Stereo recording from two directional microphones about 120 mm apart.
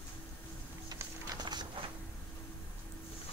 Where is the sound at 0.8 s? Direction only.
30° right (ahead or behind).